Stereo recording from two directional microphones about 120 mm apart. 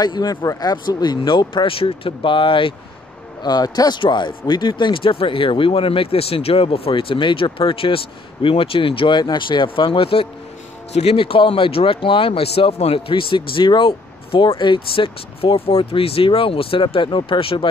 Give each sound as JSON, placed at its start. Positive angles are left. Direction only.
{"t": 0.0, "sound": "speech", "side_deg": 35}
{"t": 3.4, "sound": "speech", "side_deg": 35}
{"t": 10.9, "sound": "speech", "side_deg": 60}